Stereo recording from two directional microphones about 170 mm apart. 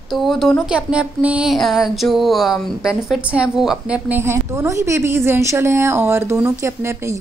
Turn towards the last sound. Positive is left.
turn(degrees=-15)  # may be behind; listen again after turning